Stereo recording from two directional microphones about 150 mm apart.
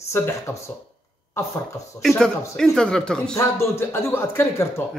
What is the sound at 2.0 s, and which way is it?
Speech, 5° left (ahead or behind).